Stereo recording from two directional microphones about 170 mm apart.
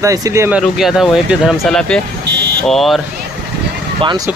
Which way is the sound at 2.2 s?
80° right.